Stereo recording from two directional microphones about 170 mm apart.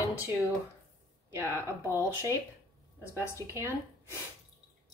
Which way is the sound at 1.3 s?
15° right (ahead or behind).